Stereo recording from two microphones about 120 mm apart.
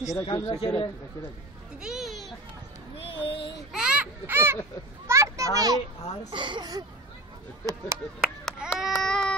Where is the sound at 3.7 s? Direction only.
5° right (ahead or behind).